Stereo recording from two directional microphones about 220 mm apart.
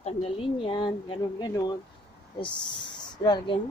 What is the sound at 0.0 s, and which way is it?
Speech, 25° left (ahead or behind).